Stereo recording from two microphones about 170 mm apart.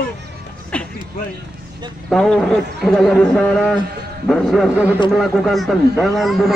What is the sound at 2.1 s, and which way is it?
A man's voice, 5° left (ahead or behind).